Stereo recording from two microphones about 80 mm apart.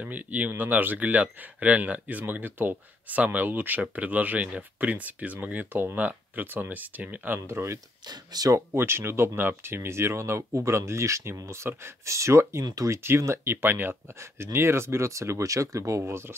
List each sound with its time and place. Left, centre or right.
0.0 s speech: centre
7.4 s speech: right
8.1 s speech: right
8.5 s speech: right
16.0 s speech: right